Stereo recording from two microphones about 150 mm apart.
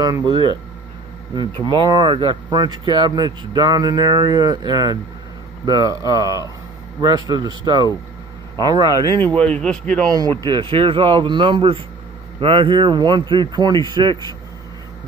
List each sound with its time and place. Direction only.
0.0 s speech: 25° right (ahead or behind)
9.1 s speech: 10° left (ahead or behind)
10.0 s speech: 25° right (ahead or behind)